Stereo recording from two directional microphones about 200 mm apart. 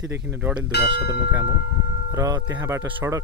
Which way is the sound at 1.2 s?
55° left (ahead or behind).